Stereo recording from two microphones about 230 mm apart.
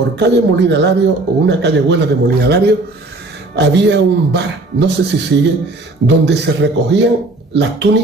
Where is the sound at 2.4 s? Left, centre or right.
Right.